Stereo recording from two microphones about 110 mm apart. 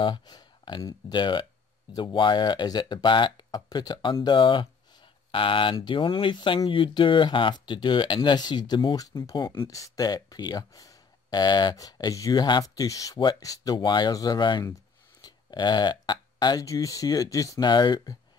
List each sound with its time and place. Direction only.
0.0 s speech: 40° left (ahead or behind)